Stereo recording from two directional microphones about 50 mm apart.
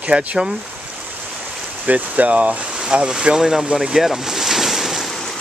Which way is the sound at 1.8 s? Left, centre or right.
Right.